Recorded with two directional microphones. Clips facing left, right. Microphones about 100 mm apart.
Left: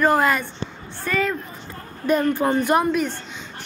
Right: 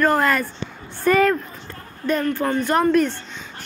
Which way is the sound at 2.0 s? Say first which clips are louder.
Left 2 dB; 10° left (ahead or behind).